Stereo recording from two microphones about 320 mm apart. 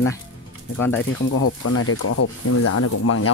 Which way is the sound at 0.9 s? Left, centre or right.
Left.